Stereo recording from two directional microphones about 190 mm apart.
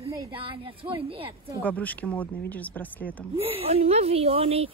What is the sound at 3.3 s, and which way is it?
Speech, 30° right (ahead or behind).